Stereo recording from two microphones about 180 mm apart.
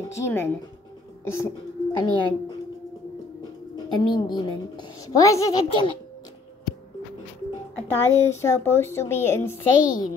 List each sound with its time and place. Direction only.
0.2 s a woman's voice: 15° left (ahead or behind)
3.7 s a woman's voice: 25° left (ahead or behind)
7.7 s a woman's voice: 15° left (ahead or behind)